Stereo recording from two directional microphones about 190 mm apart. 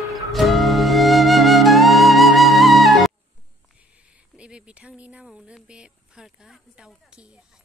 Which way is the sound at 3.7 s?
5° right (ahead or behind).